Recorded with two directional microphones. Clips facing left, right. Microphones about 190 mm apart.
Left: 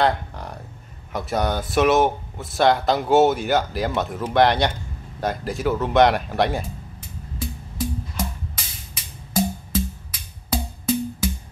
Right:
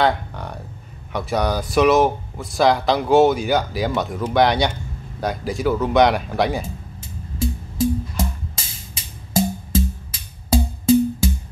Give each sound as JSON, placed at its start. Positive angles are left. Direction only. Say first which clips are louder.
{"t": 0.0, "sound": "a sound", "louder": "right 2 dB", "side_deg": 0}
{"t": 1.1, "sound": "speech", "louder": "right 2 dB", "side_deg": 0}
{"t": 7.0, "sound": "music", "louder": "right 8 dB", "side_deg": -25}